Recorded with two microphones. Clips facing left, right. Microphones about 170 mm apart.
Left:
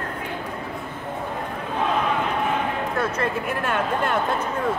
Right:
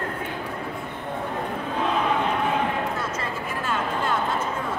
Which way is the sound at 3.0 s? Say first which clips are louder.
Left 5 dB; 60° left (ahead or behind).